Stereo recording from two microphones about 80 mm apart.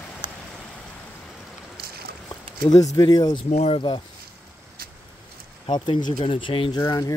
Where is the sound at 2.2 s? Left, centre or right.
Left.